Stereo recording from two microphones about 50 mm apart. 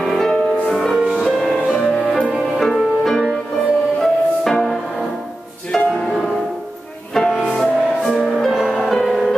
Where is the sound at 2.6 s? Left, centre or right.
Centre.